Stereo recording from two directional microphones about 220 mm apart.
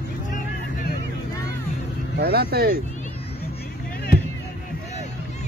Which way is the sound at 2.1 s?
45° right (ahead or behind).